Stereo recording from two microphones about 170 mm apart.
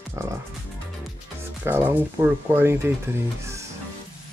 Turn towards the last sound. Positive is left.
turn(degrees=-15)  # may be behind; listen again after turning